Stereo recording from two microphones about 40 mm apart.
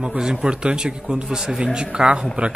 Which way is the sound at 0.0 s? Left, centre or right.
Centre.